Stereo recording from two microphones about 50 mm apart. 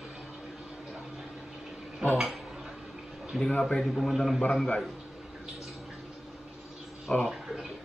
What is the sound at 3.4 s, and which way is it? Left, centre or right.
Speech, centre.